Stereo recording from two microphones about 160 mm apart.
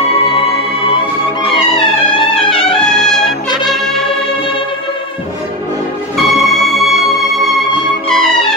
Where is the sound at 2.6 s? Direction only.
5° left (ahead or behind).